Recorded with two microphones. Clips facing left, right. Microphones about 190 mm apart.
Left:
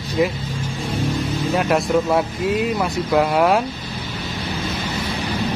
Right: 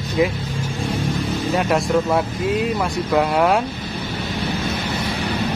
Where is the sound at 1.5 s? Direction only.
Centre (ahead or behind).